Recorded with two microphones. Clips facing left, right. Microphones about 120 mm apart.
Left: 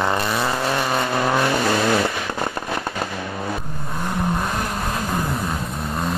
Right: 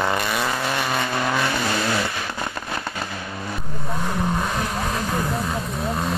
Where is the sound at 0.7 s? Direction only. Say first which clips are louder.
Left 3 dB; 35° left (ahead or behind).